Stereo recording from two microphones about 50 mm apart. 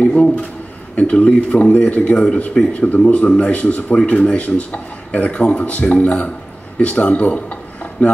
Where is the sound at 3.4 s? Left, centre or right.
Left.